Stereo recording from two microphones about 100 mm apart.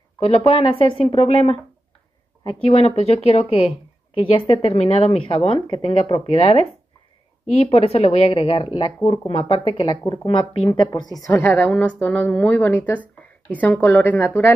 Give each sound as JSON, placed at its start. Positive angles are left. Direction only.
{"t": 0.5, "sound": "a woman's voice", "side_deg": 65}
{"t": 1.1, "sound": "speech", "side_deg": 90}
{"t": 2.4, "sound": "speech", "side_deg": 80}
{"t": 4.2, "sound": "speech", "side_deg": 60}
{"t": 7.4, "sound": "a woman's voice", "side_deg": 90}
{"t": 10.8, "sound": "a woman's voice", "side_deg": 45}
{"t": 11.3, "sound": "a woman's voice", "side_deg": 20}